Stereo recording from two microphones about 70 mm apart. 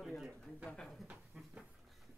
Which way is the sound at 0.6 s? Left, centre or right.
Centre.